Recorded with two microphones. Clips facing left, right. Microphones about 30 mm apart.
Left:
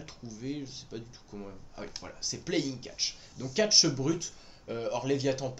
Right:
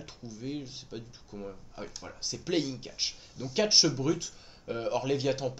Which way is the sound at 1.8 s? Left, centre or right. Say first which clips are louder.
Left 1 dB; centre.